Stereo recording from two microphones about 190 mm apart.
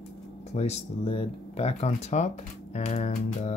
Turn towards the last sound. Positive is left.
turn(degrees=35)  # may be behind; listen again after turning